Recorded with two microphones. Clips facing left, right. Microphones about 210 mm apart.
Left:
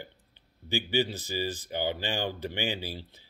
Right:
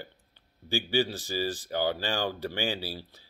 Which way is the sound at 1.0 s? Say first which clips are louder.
Right 1 dB; 20° left (ahead or behind).